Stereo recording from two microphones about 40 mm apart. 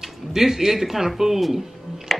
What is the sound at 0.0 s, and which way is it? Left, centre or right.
Speech, centre.